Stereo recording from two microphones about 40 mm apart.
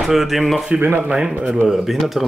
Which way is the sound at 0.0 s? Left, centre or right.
Centre.